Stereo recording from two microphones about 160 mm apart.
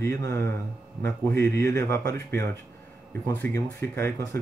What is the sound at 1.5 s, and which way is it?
Speech, 20° left (ahead or behind).